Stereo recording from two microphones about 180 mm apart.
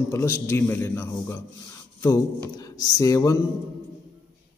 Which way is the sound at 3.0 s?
15° left (ahead or behind).